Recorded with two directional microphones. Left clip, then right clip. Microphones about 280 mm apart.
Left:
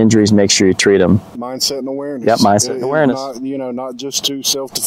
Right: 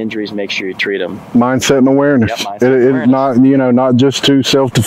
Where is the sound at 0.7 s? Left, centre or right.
Left.